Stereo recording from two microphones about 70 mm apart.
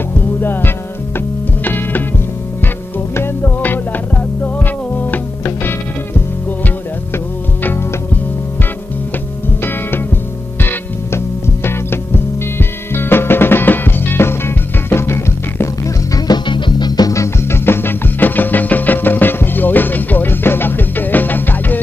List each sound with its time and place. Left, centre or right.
0.4 s music: left
3.6 s music: left
5.4 s music: left
10.6 s music: left
16.3 s music: left
17.1 s music: left
17.6 s music: left